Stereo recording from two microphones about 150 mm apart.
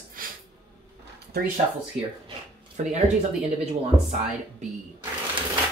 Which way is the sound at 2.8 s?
60° right (ahead or behind).